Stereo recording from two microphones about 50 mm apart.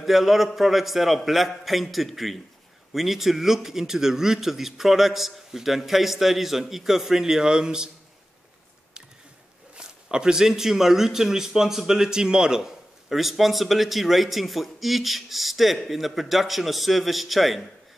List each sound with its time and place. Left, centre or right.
0.0 s a man's voice: centre
10.1 s a man's voice: centre